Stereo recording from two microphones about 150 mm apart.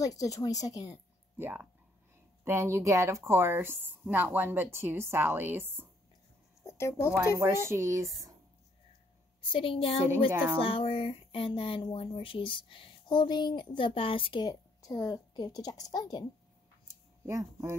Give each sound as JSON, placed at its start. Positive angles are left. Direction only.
{"t": 0.0, "sound": "speech", "side_deg": 25}
{"t": 1.4, "sound": "speech", "side_deg": -15}
{"t": 6.6, "sound": "speech", "side_deg": 20}
{"t": 7.6, "sound": "speech", "side_deg": -20}
{"t": 9.4, "sound": "speech", "side_deg": 35}
{"t": 10.3, "sound": "speech", "side_deg": -10}
{"t": 10.6, "sound": "speech", "side_deg": 40}
{"t": 16.8, "sound": "a sound", "side_deg": -20}